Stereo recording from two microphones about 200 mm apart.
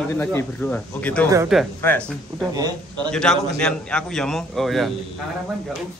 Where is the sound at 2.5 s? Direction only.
20° right (ahead or behind).